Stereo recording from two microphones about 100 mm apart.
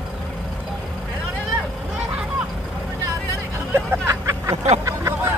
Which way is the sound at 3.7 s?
25° right (ahead or behind).